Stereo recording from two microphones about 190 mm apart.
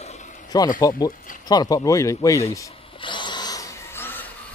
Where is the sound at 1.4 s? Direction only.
20° left (ahead or behind).